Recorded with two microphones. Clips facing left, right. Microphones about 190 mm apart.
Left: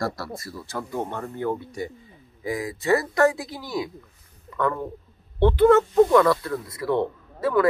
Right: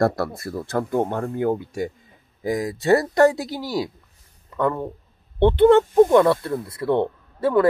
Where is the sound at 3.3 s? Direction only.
80° right.